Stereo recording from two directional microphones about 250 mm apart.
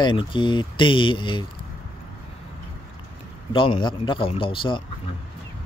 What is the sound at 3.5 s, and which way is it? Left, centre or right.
Speech, left.